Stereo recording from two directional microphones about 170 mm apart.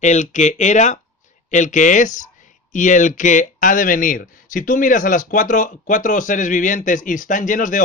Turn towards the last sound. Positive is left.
turn(degrees=50)  # may be behind; listen again after turning